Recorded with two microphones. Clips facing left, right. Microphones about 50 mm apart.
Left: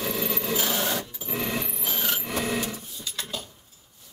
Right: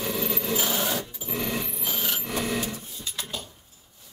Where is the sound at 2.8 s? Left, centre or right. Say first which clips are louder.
Even; right.